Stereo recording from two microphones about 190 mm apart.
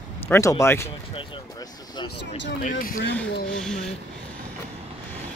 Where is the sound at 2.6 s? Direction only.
50° left (ahead or behind).